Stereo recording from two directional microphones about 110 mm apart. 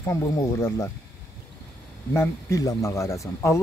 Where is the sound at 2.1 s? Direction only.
25° left (ahead or behind).